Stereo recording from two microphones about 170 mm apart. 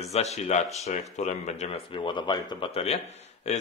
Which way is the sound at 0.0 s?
40° left (ahead or behind).